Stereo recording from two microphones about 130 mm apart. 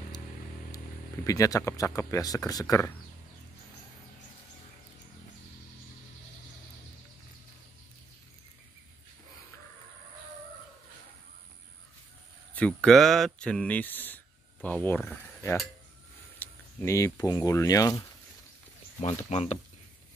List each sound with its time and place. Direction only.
1.2 s speech: 25° left (ahead or behind)
12.5 s speech: 5° left (ahead or behind); by 18.0 s 25° left (ahead or behind)
18.9 s speech: 55° left (ahead or behind)